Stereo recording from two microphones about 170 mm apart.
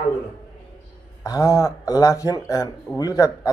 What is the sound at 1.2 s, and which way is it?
Speech, 20° left (ahead or behind).